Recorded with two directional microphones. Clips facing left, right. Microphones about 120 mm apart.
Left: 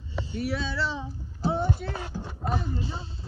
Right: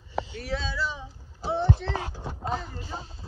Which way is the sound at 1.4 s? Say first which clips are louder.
Left 1 dB; centre (ahead or behind).